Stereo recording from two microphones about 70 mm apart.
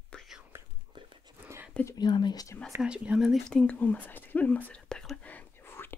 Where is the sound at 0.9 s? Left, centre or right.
Right.